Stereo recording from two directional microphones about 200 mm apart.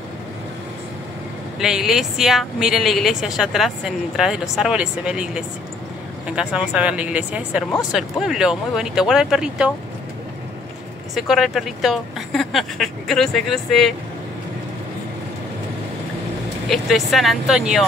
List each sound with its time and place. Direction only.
1.6 s a woman's voice: centre (ahead or behind)
11.1 s a woman's voice: centre (ahead or behind)
16.6 s a woman's voice: centre (ahead or behind)